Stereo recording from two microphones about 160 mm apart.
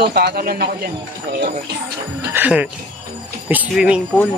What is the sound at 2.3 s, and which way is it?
Speech, 10° right (ahead or behind).